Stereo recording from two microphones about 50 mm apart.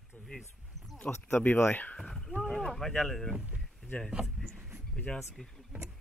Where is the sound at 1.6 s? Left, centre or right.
Left.